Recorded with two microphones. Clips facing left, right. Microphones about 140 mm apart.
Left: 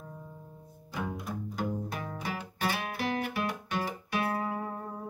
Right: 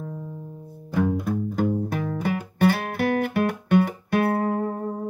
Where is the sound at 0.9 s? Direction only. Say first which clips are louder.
Right 12 dB; 55° right (ahead or behind).